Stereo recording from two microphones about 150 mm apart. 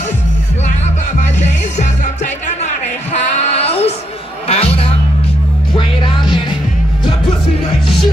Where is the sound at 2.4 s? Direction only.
50° left (ahead or behind).